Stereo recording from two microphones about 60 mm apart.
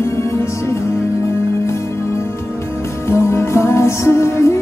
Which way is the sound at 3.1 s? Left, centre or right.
Left.